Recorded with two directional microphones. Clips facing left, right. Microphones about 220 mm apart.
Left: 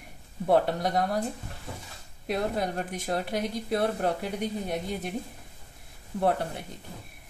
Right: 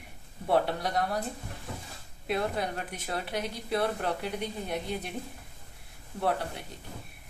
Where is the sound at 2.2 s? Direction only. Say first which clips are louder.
Left 2 dB; 45° left (ahead or behind).